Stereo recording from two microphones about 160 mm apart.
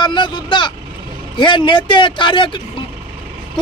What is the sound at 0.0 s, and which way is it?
Speech, 30° left (ahead or behind).